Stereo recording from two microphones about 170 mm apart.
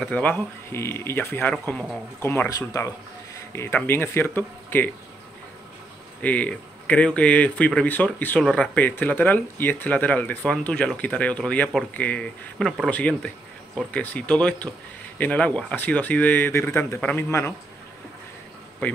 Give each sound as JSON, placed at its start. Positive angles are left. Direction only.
{"t": 0.0, "sound": "speech", "side_deg": 10}
{"t": 2.2, "sound": "speech", "side_deg": 15}
{"t": 6.2, "sound": "speech", "side_deg": 10}
{"t": 18.8, "sound": "speech", "side_deg": 10}